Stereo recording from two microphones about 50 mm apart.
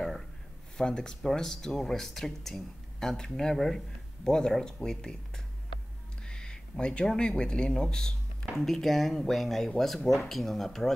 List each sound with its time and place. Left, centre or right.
0.7 s speech: centre
6.2 s a sound: centre
7.1 s speech: centre
8.5 s speech: centre